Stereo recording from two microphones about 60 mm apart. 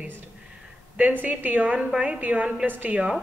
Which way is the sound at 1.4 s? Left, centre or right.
Right.